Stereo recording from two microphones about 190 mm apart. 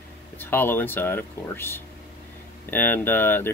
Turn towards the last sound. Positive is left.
turn(degrees=10)  # may be behind; listen again after turning